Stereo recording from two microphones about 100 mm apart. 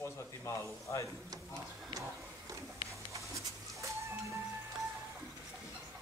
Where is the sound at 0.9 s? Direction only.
25° left (ahead or behind).